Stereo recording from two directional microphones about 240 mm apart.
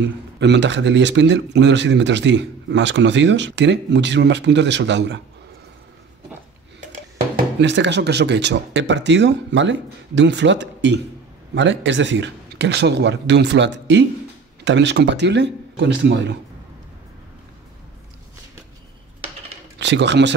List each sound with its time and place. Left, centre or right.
0.0 s speech: right
7.3 s speech: right
19.8 s speech: right